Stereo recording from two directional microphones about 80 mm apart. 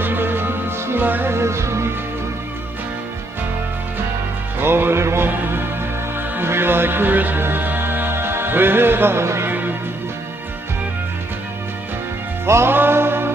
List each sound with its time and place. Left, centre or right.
0.0 s music: right
4.6 s music: right
6.3 s music: right
12.4 s music: right